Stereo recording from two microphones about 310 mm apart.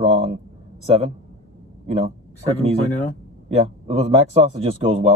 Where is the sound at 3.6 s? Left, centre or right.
Right.